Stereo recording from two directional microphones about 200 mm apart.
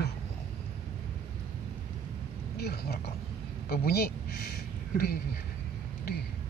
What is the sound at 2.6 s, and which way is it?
Speech, 55° left (ahead or behind).